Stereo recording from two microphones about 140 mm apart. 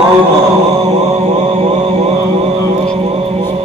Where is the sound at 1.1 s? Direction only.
45° right (ahead or behind).